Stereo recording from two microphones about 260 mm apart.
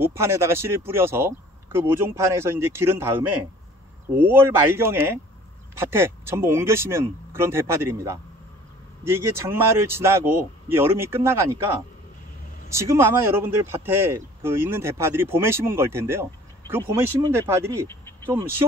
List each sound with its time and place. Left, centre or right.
0.0 s speech: centre
12.7 s speech: centre
17.8 s a sound: centre
18.6 s speech: centre